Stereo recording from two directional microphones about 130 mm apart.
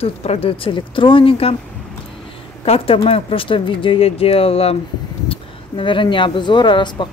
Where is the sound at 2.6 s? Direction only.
45° left (ahead or behind).